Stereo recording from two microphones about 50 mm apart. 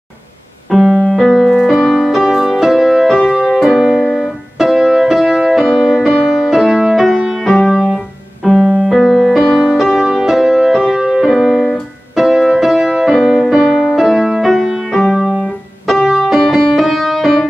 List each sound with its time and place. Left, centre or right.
0.7 s keyboard: centre
1.0 s music: centre
6.1 s music: centre
7.4 s piano: centre
8.5 s keyboard: right
8.8 s music: centre
10.7 s music: centre
14.9 s music: centre
15.2 s piano: centre
16.2 s music: centre